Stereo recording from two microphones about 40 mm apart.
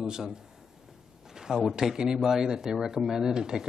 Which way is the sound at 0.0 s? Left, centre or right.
Centre.